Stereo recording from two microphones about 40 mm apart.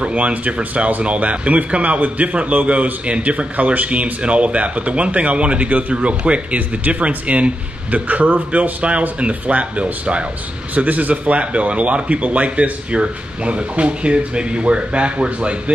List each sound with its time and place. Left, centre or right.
0.0 s speech: right